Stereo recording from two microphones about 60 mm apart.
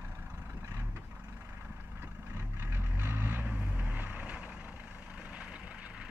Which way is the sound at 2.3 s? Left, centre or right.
Right.